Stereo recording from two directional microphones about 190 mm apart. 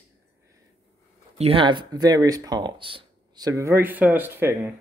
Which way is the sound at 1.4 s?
30° right (ahead or behind).